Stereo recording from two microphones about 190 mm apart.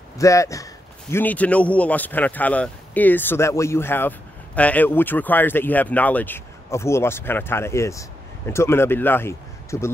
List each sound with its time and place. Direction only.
0.2 s speech: 15° left (ahead or behind)